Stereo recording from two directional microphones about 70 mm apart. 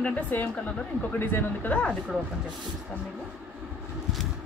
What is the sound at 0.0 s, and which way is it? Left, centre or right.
Speech, left.